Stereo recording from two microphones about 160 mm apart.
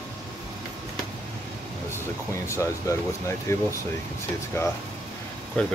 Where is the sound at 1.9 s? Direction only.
15° left (ahead or behind).